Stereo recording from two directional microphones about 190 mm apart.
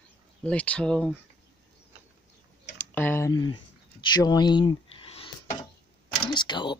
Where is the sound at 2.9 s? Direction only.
10° left (ahead or behind); by 5.2 s 30° left (ahead or behind).